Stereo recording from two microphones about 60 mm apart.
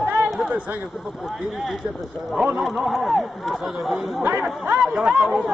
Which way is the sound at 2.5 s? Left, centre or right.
Centre.